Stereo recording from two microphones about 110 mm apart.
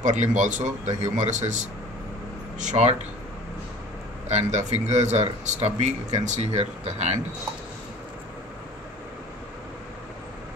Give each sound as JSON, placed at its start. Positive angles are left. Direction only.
{"t": 0.0, "sound": "a man's voice", "side_deg": -90}
{"t": 4.3, "sound": "a man's voice", "side_deg": -90}